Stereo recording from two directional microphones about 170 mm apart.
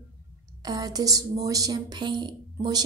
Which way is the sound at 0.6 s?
25° right (ahead or behind).